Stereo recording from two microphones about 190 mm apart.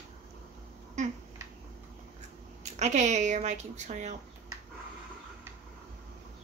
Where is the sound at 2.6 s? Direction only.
40° right (ahead or behind).